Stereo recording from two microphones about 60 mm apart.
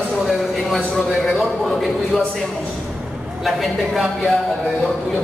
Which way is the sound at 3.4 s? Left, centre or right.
Centre.